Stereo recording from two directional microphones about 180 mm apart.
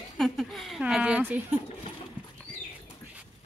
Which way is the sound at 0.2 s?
Centre (ahead or behind).